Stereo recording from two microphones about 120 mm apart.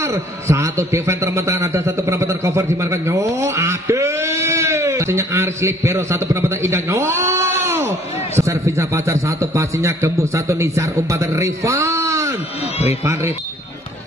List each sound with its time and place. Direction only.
0.1 s a man's voice: 25° right (ahead or behind)